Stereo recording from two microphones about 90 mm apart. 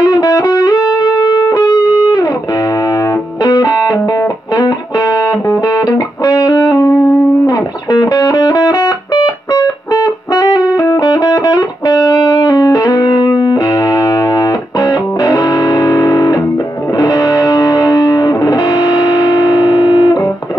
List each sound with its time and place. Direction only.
0.0 s music: 35° left (ahead or behind)
3.4 s music: 40° left (ahead or behind)